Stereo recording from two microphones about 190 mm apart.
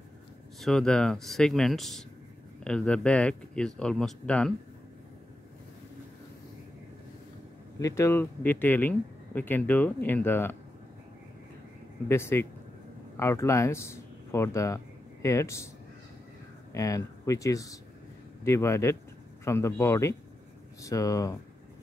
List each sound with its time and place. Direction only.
0.6 s speech: centre (ahead or behind)
7.8 s speech: 15° left (ahead or behind)
12.1 s speech: 15° left (ahead or behind)
16.7 s speech: 15° left (ahead or behind)